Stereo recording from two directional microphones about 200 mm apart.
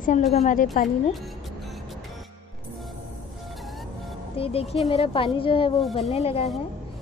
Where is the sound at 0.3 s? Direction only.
35° left (ahead or behind).